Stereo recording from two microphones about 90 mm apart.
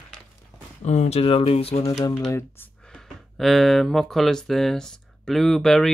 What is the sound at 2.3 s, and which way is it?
Speech, 30° left (ahead or behind).